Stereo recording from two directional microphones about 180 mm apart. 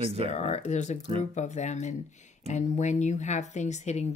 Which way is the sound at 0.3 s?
40° left (ahead or behind).